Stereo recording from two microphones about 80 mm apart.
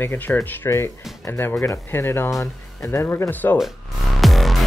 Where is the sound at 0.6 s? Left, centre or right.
Left.